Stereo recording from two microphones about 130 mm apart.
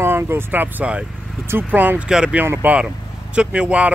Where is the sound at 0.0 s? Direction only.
20° right (ahead or behind).